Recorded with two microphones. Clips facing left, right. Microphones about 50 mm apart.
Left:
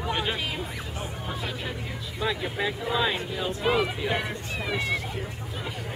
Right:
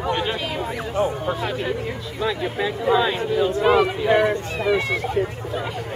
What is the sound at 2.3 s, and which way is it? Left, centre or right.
Speech, centre.